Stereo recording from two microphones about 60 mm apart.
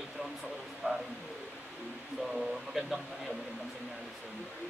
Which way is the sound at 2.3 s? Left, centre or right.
Centre.